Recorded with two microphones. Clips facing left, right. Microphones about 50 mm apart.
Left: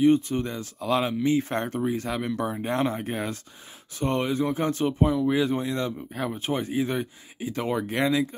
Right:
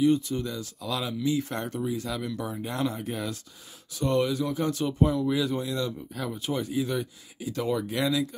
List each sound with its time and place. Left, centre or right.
0.0 s speech: left